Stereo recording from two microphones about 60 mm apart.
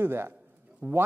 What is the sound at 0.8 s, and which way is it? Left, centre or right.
Speech, right.